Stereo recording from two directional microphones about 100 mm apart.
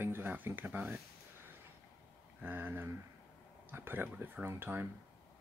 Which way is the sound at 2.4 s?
20° right (ahead or behind).